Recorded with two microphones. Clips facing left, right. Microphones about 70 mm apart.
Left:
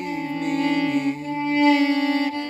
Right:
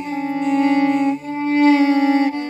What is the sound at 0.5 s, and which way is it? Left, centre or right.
Music, right.